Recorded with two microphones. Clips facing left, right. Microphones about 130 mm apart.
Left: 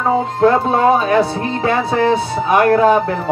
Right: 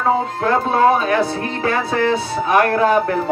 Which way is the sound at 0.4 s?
25° left (ahead or behind).